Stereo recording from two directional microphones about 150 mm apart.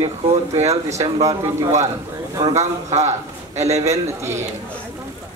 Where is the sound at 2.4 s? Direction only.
50° right (ahead or behind).